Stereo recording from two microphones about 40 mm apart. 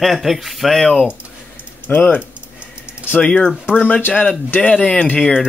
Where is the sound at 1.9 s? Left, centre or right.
Left.